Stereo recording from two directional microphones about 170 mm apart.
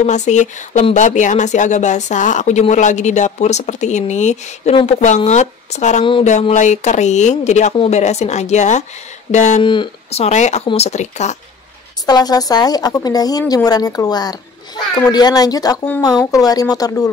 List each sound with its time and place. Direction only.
0.0 s speech: 45° left (ahead or behind)
9.6 s speech: 30° left (ahead or behind)
12.1 s a woman's voice: 25° left (ahead or behind)